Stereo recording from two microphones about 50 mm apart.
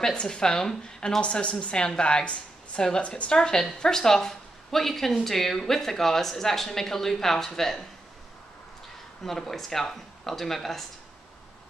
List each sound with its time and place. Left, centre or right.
0.0 s a woman's voice: centre
9.2 s a woman's voice: centre